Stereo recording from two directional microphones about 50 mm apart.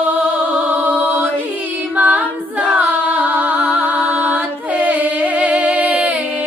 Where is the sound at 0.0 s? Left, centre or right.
Right.